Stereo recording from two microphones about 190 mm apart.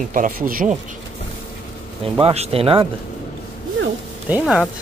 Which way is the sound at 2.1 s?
30° right (ahead or behind).